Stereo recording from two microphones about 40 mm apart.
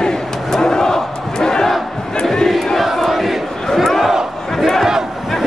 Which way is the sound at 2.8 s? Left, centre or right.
Centre.